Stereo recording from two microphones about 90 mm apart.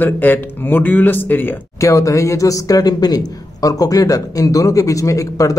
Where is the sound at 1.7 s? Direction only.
35° left (ahead or behind).